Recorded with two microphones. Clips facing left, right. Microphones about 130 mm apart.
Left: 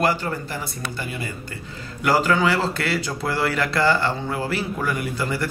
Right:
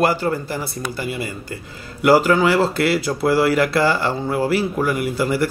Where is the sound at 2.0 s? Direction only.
10° right (ahead or behind).